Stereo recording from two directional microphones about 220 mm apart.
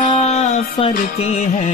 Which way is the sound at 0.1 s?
30° left (ahead or behind).